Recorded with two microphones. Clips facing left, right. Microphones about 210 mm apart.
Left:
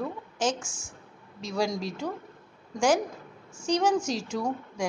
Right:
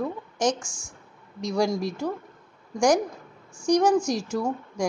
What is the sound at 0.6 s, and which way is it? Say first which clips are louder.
Speech: even; 5° left (ahead or behind).